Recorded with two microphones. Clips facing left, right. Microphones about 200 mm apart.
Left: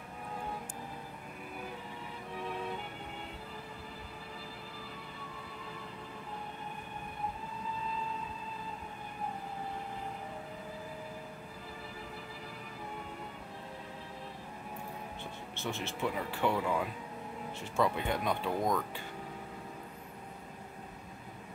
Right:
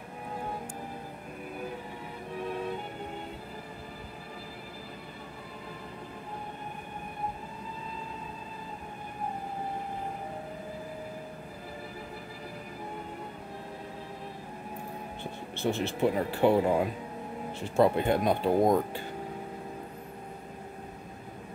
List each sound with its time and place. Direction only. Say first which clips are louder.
15.5 s speech: right 9 dB; 35° right (ahead or behind)